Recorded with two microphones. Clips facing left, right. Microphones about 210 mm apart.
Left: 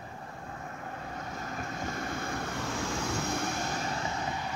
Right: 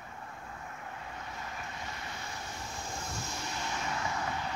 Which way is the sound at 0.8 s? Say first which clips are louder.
Left 5 dB; 45° left (ahead or behind).